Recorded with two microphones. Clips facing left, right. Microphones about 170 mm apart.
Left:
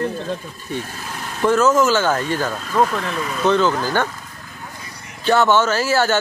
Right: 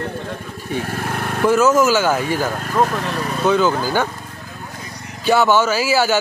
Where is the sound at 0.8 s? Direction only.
65° right (ahead or behind).